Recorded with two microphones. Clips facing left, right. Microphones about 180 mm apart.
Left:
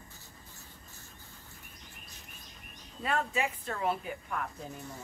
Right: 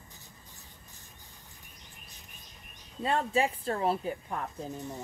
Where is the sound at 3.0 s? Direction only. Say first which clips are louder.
Right 4 dB; 30° right (ahead or behind).